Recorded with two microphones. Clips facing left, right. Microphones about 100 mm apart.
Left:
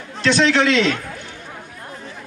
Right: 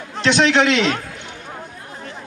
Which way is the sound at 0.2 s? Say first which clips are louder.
Right 1 dB; 20° right (ahead or behind).